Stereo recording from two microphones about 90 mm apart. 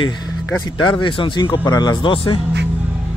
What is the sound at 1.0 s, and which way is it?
Speech, 65° left (ahead or behind).